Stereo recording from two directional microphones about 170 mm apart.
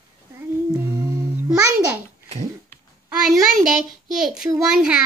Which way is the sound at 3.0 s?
5° right (ahead or behind).